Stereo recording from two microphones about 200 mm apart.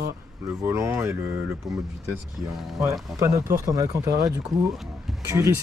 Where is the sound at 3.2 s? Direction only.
15° right (ahead or behind).